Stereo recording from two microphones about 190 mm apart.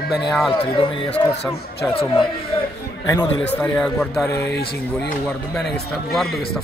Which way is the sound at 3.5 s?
5° left (ahead or behind).